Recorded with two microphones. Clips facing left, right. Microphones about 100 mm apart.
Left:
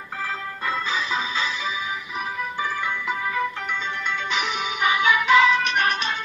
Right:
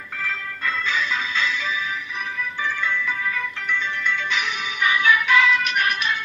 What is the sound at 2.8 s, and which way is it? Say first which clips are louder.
Music: right 1 dB; 20° left (ahead or behind).